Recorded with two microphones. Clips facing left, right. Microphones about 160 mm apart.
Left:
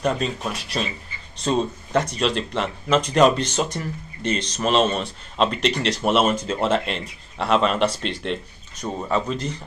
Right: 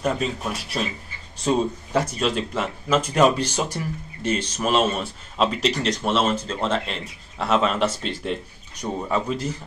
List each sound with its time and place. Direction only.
0.0 s a man's voice: 5° right (ahead or behind)
6.0 s a man's voice: 15° left (ahead or behind); by 9.6 s 5° right (ahead or behind)